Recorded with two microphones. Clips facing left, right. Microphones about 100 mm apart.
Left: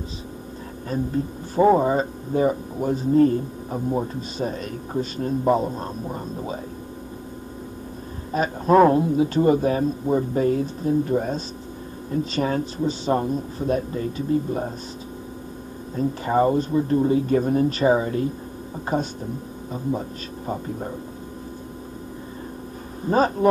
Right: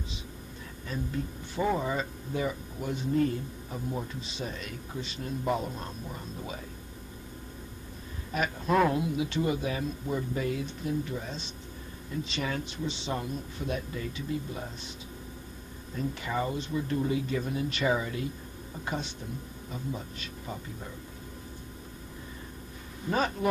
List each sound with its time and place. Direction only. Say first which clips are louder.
0.8 s speech: left 9 dB; 40° left (ahead or behind)
8.3 s speech: left 9 dB; 35° left (ahead or behind)
15.9 s speech: left 10 dB; 40° left (ahead or behind)
23.0 s speech: left 10 dB; 35° left (ahead or behind)